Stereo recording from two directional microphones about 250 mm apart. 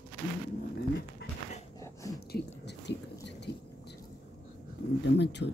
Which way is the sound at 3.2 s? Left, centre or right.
Left.